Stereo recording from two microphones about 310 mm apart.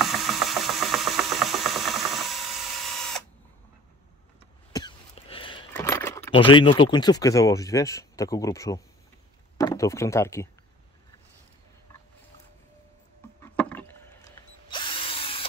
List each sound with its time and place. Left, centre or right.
0.0 s engine: centre
4.7 s a sound: centre
5.7 s speech: centre
13.4 s drill: centre